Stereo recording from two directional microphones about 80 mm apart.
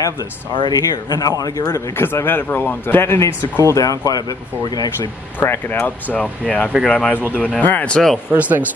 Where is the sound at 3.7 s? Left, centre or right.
Left.